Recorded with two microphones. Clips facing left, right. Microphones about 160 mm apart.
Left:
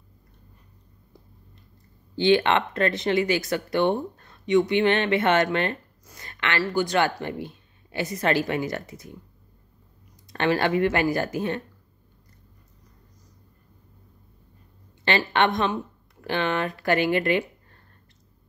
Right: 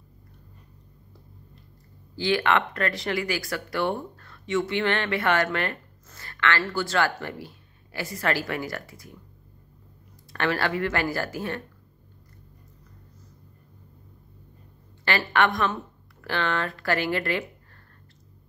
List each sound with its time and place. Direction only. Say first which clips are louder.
2.1 s speech: left 4 dB; 25° left (ahead or behind)
10.3 s speech: left 4 dB; 20° left (ahead or behind)
15.0 s speech: left 2 dB; 20° left (ahead or behind)